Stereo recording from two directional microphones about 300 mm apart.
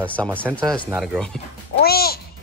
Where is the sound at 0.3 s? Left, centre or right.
Centre.